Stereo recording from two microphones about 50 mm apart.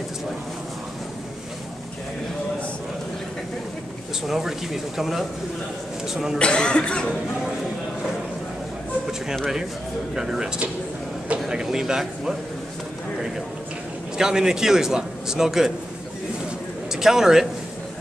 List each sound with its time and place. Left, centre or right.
4.3 s a man's voice: centre
6.3 s speech: centre
10.1 s a man's voice: centre
14.1 s a man's voice: centre
16.9 s a man's voice: centre